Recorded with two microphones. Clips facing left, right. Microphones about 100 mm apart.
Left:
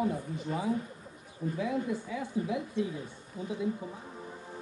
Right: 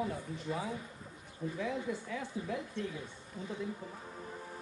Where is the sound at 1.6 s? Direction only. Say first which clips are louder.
Left 5 dB; 5° left (ahead or behind).